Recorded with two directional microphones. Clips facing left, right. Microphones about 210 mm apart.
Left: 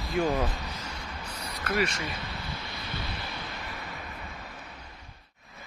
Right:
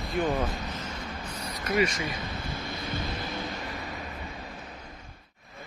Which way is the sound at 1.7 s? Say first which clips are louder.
Right 3 dB; 10° right (ahead or behind).